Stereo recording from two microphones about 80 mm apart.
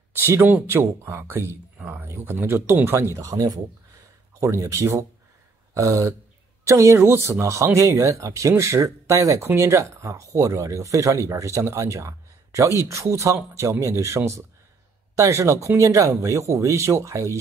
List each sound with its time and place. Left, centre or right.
0.2 s speech: right